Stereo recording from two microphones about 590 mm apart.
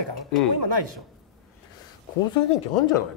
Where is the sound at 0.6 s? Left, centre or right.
Right.